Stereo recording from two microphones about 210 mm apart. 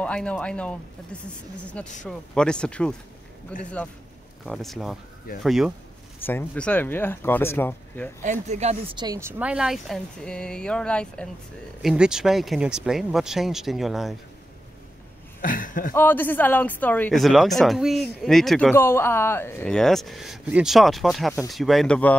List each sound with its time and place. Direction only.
0.0 s speech: 5° left (ahead or behind)
8.2 s speech: 35° right (ahead or behind); by 9.3 s 20° right (ahead or behind)
9.4 s speech: 5° right (ahead or behind)
15.4 s speech: 40° left (ahead or behind)
15.9 s speech: 10° left (ahead or behind)